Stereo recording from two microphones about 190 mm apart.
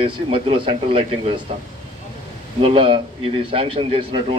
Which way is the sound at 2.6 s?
30° right (ahead or behind).